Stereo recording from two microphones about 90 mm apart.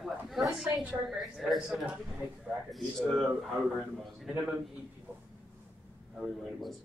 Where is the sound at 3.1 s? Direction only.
Centre (ahead or behind).